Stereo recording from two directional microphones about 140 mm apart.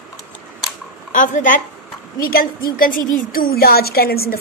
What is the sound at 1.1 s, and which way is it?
Speech, 65° left (ahead or behind).